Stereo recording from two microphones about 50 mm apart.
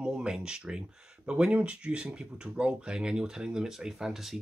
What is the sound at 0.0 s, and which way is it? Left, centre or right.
Speech, centre.